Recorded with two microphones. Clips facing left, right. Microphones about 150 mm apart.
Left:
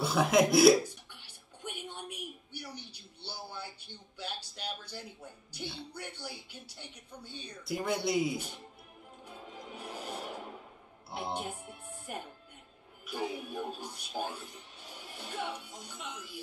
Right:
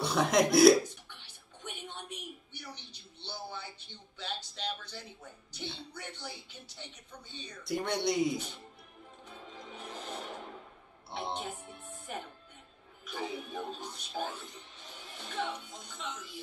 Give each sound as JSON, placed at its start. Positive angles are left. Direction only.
{"t": 0.0, "sound": "music", "side_deg": 5}
{"t": 13.0, "sound": "speech", "side_deg": 10}